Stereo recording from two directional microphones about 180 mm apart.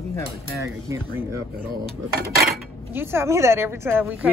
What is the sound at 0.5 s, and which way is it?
Speech, 15° right (ahead or behind).